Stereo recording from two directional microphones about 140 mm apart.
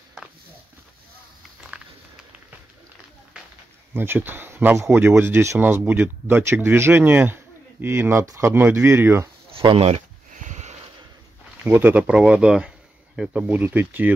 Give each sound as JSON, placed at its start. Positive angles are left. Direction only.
{"t": 3.9, "sound": "speech", "side_deg": -15}
{"t": 9.5, "sound": "a sound", "side_deg": -40}
{"t": 11.6, "sound": "speech", "side_deg": -15}